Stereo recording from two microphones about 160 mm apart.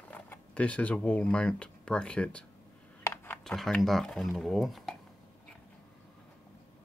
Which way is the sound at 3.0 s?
15° left (ahead or behind).